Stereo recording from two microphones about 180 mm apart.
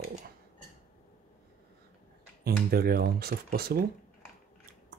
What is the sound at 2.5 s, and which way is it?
Speech, 60° right (ahead or behind).